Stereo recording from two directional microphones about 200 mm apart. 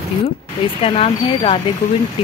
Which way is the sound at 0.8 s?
30° left (ahead or behind).